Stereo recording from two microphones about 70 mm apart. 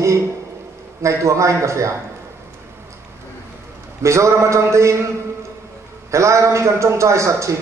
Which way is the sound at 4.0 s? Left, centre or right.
Right.